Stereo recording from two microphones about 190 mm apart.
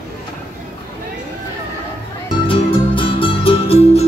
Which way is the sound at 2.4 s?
30° left (ahead or behind).